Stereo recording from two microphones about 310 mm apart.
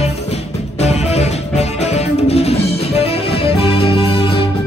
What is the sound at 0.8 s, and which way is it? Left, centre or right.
Music, left.